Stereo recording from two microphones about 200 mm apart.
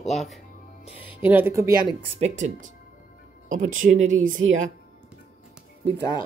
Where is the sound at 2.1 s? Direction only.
35° right (ahead or behind).